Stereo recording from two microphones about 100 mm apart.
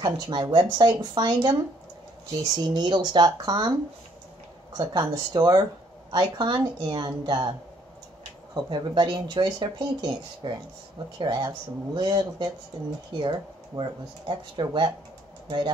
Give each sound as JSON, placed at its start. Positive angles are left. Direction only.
{"t": 0.0, "sound": "speech", "side_deg": -50}
{"t": 4.7, "sound": "speech", "side_deg": -45}
{"t": 8.6, "sound": "speech", "side_deg": -50}